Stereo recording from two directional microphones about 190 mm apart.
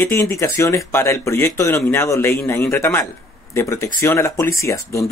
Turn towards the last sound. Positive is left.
turn(degrees=15)  # may be behind; listen again after turning